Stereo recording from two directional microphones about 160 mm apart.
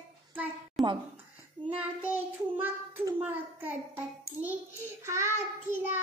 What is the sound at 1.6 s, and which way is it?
Child singing, 10° right (ahead or behind).